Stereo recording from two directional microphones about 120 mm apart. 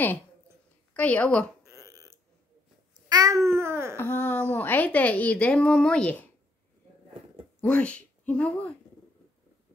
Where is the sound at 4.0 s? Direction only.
15° left (ahead or behind).